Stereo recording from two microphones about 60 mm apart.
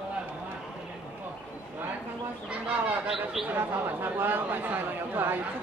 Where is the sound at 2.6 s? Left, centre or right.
Centre.